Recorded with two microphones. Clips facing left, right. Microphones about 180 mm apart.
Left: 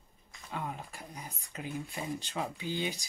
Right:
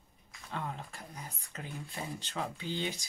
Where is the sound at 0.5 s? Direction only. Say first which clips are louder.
Left 1 dB; 10° left (ahead or behind).